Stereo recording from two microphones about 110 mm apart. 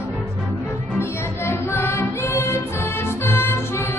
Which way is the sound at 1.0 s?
25° left (ahead or behind).